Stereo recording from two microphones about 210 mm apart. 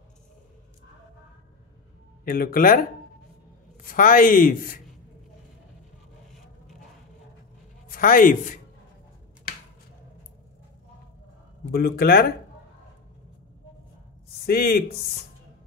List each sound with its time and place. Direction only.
2.2 s speech: 45° left (ahead or behind)
3.8 s speech: 40° left (ahead or behind)
7.9 s speech: 40° left (ahead or behind)
11.7 s speech: 50° left (ahead or behind)
14.4 s speech: 45° left (ahead or behind)